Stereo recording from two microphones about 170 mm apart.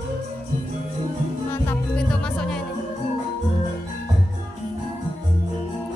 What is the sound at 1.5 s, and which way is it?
Speech, 10° left (ahead or behind).